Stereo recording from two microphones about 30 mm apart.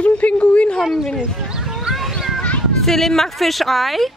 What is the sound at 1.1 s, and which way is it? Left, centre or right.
Horse, centre.